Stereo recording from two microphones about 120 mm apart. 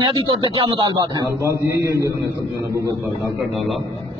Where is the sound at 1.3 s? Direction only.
20° right (ahead or behind).